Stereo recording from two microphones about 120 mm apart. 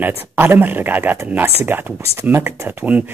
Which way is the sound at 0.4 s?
15° right (ahead or behind).